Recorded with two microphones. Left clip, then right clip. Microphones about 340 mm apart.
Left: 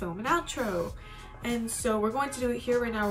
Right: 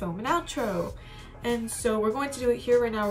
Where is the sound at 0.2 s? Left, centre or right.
Centre.